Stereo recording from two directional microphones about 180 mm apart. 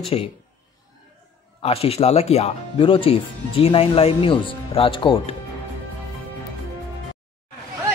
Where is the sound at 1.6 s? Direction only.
35° left (ahead or behind).